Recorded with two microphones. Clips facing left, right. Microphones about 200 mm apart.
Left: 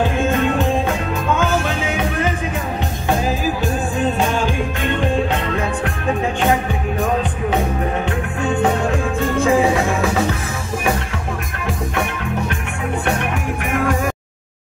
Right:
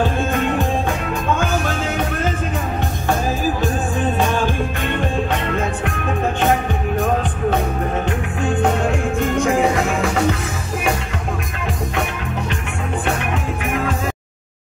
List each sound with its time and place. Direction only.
1.8 s music: 15° left (ahead or behind)
4.4 s music: 15° left (ahead or behind)
9.2 s music: 15° right (ahead or behind)